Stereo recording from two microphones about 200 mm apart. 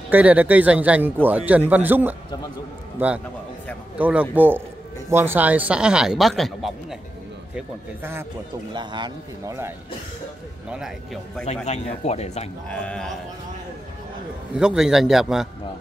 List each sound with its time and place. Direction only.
0.1 s a man's voice: 5° right (ahead or behind)
7.5 s a man's voice: 10° right (ahead or behind)
8.7 s a man's voice: 20° right (ahead or behind)
11.6 s speech: 35° left (ahead or behind)
12.6 s a man's voice: 5° left (ahead or behind)
14.6 s a man's voice: 5° right (ahead or behind)